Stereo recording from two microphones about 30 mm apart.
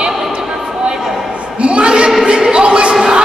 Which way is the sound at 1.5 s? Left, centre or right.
Right.